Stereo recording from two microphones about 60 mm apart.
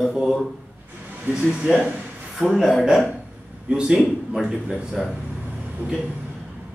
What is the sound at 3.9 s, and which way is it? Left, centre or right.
Speech, centre.